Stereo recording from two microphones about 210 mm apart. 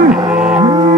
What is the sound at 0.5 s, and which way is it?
Music, 20° right (ahead or behind).